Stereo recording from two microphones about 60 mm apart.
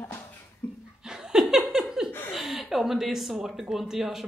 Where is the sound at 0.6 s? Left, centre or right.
Left.